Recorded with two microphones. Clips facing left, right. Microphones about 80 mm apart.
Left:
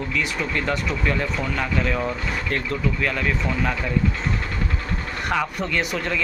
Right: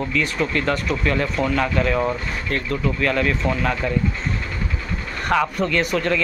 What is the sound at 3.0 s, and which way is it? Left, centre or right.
Speech, centre.